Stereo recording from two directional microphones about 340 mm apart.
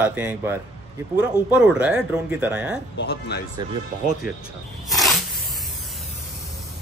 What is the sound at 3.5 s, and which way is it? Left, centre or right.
Speech, right.